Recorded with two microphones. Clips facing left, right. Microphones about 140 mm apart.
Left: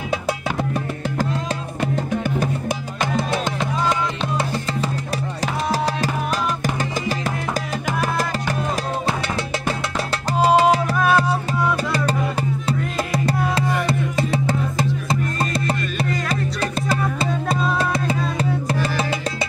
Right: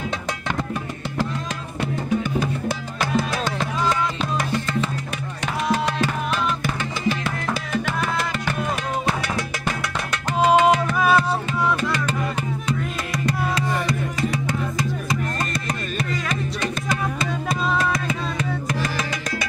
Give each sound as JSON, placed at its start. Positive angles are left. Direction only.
{"t": 7.7, "sound": "music", "side_deg": 40}
{"t": 10.4, "sound": "music", "side_deg": 35}
{"t": 13.6, "sound": "music", "side_deg": 30}
{"t": 17.7, "sound": "music", "side_deg": 30}